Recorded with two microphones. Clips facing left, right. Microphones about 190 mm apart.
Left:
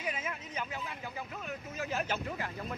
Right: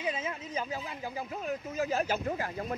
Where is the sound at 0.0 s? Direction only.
30° right (ahead or behind).